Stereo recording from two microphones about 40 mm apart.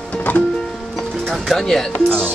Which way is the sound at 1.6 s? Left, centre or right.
Centre.